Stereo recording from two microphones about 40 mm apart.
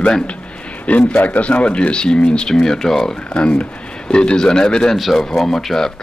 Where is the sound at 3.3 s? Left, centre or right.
Left.